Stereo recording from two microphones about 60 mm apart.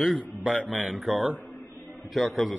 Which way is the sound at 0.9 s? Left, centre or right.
Centre.